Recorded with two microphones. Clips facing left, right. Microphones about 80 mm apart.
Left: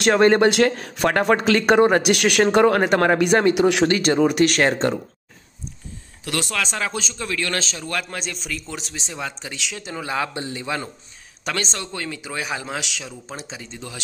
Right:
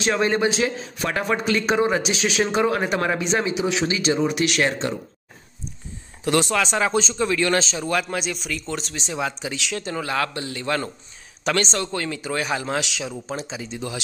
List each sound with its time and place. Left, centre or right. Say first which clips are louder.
0.0 s speech: left 6 dB; left
6.2 s speech: right 5 dB; right
8.0 s a man's voice: right 4 dB; centre